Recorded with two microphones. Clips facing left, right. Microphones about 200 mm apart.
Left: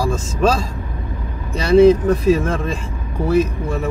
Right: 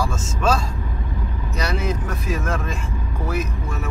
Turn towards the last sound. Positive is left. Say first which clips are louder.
# left 8 dB
turn(degrees=30)  # may be behind; listen again after turning